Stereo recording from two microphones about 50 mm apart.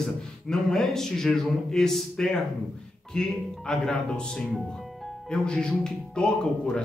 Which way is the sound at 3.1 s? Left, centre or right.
Centre.